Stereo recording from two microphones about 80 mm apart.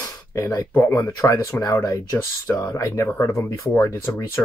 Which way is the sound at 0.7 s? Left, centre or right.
Left.